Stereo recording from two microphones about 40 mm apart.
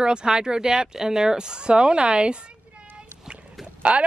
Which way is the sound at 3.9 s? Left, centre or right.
Right.